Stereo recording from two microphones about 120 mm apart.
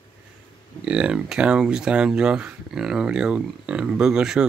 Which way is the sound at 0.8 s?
10° right (ahead or behind).